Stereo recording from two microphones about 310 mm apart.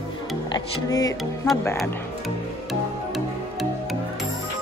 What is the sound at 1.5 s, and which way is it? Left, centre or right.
Speech, centre.